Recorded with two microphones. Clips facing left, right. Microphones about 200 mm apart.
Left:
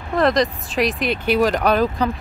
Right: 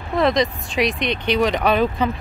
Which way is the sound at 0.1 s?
Centre (ahead or behind).